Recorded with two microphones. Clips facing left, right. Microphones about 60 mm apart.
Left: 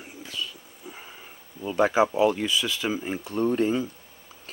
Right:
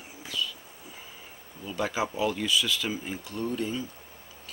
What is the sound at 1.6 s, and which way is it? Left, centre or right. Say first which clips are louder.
Speech: left 8 dB; left.